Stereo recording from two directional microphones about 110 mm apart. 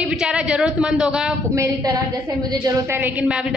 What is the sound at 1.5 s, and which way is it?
Speech, 25° right (ahead or behind).